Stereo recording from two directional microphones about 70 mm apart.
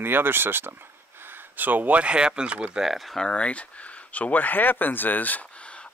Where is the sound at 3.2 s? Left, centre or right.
Centre.